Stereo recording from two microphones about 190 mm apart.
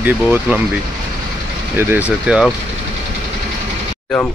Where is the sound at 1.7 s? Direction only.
10° right (ahead or behind).